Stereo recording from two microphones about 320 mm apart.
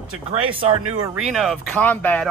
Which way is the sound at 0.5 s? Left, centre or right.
Centre.